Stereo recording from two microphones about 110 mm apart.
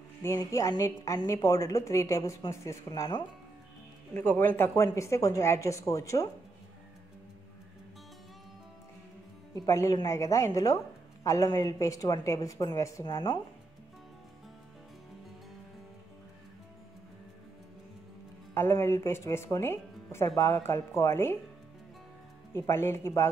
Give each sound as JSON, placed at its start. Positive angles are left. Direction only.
{"t": 0.2, "sound": "speech", "side_deg": 25}
{"t": 2.9, "sound": "a woman's voice", "side_deg": 40}
{"t": 4.1, "sound": "speech", "side_deg": 15}
{"t": 9.7, "sound": "a woman's voice", "side_deg": 25}
{"t": 18.5, "sound": "speech", "side_deg": 20}
{"t": 22.5, "sound": "speech", "side_deg": 20}